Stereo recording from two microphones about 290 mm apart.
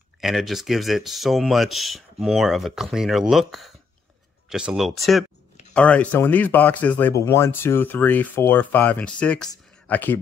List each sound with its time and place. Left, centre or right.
0.2 s speech: centre